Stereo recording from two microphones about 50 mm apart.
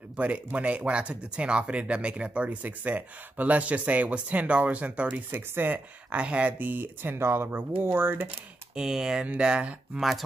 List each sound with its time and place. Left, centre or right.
0.2 s speech: right
5.3 s speech: right
6.1 s speech: right
8.7 s speech: centre
9.9 s speech: centre